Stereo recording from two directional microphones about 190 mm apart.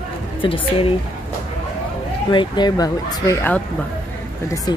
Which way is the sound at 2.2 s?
25° left (ahead or behind).